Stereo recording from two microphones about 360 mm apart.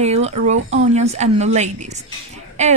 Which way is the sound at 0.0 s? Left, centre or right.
Centre.